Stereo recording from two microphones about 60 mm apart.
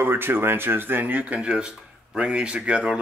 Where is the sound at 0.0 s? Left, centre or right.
Right.